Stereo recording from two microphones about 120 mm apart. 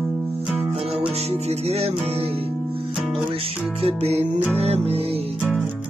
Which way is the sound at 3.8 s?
55° right (ahead or behind).